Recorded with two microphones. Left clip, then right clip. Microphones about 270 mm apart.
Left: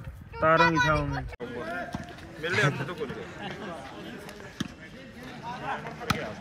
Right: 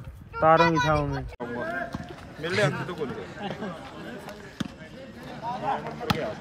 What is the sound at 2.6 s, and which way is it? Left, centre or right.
Speech, right.